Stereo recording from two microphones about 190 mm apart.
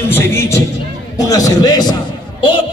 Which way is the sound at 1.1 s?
20° left (ahead or behind).